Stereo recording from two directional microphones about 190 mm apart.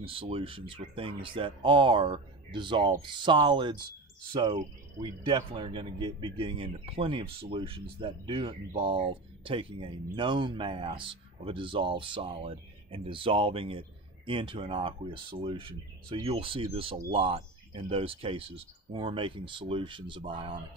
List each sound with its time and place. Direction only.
0.0 s speech: 30° right (ahead or behind)